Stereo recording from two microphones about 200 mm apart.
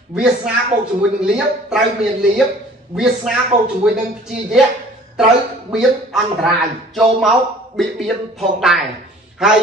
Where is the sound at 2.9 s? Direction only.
5° right (ahead or behind).